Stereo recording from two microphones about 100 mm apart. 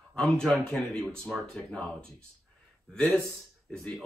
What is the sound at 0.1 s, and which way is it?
Speech, 5° left (ahead or behind).